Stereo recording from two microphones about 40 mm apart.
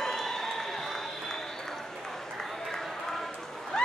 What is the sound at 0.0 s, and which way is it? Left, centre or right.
Applause, centre.